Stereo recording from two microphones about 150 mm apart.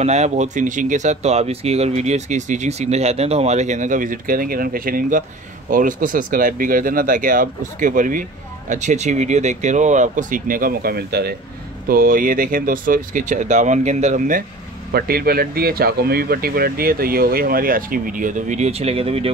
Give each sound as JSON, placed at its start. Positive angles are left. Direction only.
{"t": 0.0, "sound": "speech", "side_deg": -50}
{"t": 11.9, "sound": "speech", "side_deg": -75}
{"t": 14.9, "sound": "speech", "side_deg": -90}